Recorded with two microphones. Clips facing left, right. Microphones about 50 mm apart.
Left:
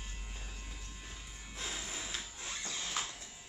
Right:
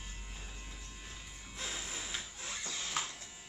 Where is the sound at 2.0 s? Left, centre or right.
Centre.